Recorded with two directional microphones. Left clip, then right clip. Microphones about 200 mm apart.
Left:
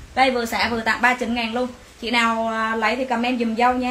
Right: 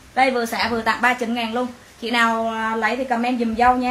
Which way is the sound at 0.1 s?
10° right (ahead or behind).